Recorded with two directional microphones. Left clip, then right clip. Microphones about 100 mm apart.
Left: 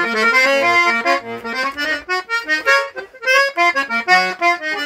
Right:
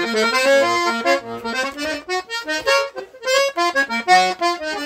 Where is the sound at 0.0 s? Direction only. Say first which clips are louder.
Left 3 dB; 5° right (ahead or behind).